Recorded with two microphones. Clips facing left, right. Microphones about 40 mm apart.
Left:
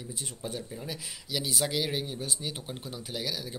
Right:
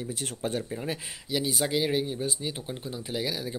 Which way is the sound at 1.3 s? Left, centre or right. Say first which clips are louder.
Right 3 dB; centre.